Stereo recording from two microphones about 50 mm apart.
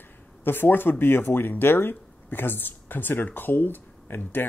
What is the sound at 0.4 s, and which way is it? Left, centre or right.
Speech, left.